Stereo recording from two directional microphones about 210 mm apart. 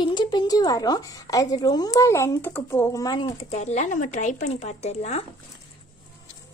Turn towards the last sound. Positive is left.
turn(degrees=30)  # may be behind; listen again after turning